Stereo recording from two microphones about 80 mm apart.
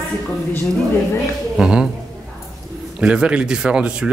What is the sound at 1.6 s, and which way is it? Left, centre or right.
Speech, centre.